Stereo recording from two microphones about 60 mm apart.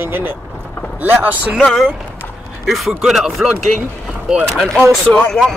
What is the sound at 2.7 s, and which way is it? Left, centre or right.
Speech, centre.